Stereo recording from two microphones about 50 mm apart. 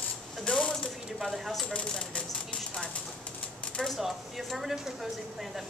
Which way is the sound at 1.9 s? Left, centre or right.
Centre.